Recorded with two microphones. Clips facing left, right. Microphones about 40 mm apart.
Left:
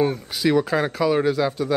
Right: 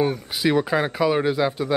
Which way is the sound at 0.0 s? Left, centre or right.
Centre.